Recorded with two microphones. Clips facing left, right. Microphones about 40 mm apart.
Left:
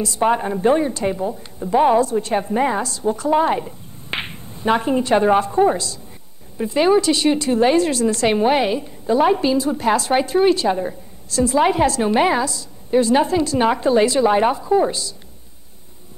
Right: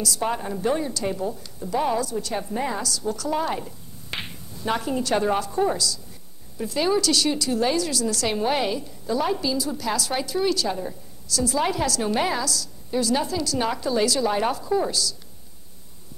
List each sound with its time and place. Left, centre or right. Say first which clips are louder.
0.0 s a woman's voice: left 8 dB; left